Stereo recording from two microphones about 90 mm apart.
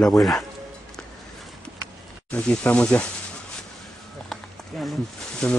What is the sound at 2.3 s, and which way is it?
Speech, 10° left (ahead or behind).